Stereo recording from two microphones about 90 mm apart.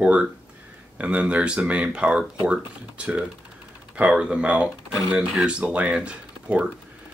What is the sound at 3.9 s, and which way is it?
Speech, 10° right (ahead or behind).